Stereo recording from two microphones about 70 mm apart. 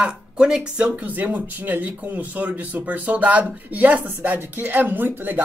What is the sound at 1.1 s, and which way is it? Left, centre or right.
Speech, right.